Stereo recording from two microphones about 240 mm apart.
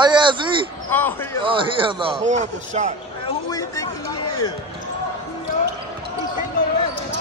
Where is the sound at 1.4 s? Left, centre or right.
Right.